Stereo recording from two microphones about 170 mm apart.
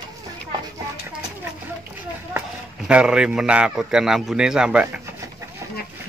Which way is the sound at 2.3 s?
5° right (ahead or behind).